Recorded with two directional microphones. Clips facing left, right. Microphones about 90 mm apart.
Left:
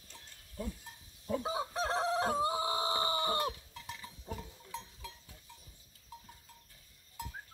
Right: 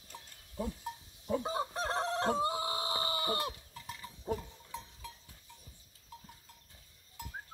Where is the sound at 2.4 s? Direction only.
25° left (ahead or behind).